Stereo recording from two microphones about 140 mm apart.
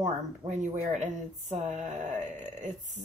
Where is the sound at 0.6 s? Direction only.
60° right (ahead or behind).